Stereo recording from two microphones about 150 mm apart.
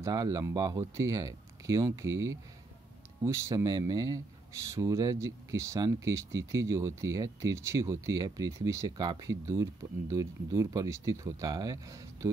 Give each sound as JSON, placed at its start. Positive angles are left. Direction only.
{"t": 0.0, "sound": "speech", "side_deg": -25}